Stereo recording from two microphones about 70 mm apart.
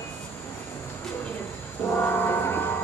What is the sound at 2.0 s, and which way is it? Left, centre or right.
Music, left.